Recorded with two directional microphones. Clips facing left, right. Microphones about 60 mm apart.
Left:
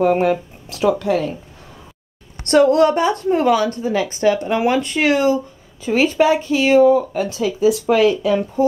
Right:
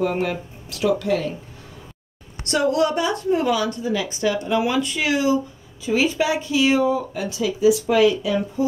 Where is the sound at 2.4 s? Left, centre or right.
Left.